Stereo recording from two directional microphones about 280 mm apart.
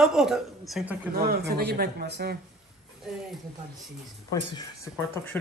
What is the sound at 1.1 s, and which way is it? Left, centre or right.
Speech, right.